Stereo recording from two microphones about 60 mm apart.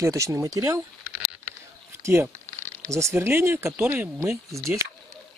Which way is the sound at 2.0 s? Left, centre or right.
Right.